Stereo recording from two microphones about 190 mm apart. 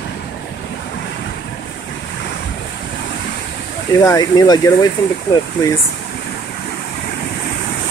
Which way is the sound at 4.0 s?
20° left (ahead or behind).